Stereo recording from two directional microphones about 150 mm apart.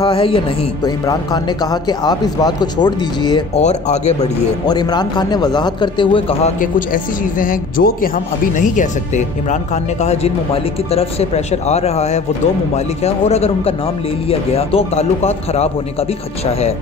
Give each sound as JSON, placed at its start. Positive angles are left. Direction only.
{"t": 0.0, "sound": "a man's voice", "side_deg": 35}
{"t": 0.8, "sound": "a man's voice", "side_deg": 25}
{"t": 3.5, "sound": "speech", "side_deg": 50}
{"t": 4.6, "sound": "a man's voice", "side_deg": 25}
{"t": 6.6, "sound": "speech", "side_deg": 65}